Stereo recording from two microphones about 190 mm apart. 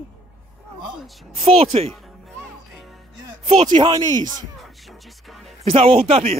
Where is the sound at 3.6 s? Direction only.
25° right (ahead or behind).